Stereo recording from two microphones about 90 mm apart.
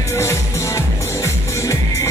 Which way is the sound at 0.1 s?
30° left (ahead or behind).